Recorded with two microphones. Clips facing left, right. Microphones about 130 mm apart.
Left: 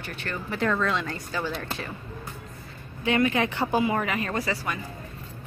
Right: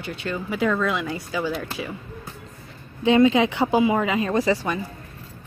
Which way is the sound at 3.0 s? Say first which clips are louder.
Right 7 dB; 20° right (ahead or behind).